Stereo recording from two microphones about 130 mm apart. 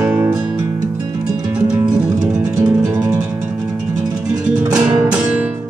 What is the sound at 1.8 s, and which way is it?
Music, 30° right (ahead or behind).